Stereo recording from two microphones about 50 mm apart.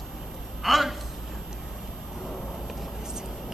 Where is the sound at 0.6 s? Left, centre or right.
Centre.